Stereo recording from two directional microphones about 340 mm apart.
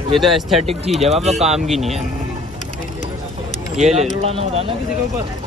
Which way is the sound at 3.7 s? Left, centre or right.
Centre.